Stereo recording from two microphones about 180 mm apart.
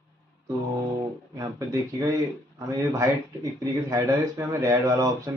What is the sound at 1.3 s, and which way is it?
Speech, 15° right (ahead or behind).